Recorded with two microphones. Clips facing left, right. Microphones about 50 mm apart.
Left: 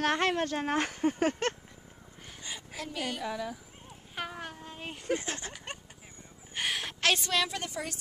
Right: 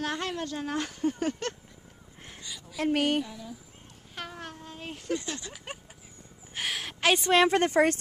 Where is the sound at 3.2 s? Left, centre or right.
Left.